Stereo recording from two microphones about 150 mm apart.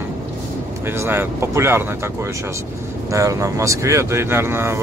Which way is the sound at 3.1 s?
20° right (ahead or behind).